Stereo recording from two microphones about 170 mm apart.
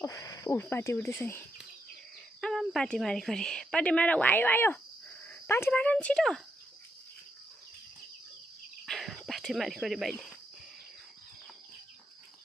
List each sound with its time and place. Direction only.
0.0 s speech: 20° left (ahead or behind)
2.4 s a woman's voice: centre (ahead or behind)
8.8 s cricket: centre (ahead or behind)